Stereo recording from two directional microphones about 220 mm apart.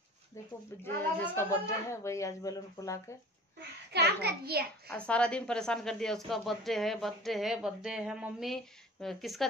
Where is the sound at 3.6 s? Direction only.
50° right (ahead or behind).